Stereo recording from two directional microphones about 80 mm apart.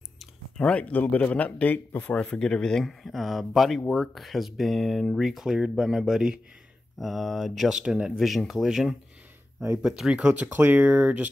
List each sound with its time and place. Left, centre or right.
0.6 s speech: centre